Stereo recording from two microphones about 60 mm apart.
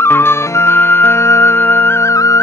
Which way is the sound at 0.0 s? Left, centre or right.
Left.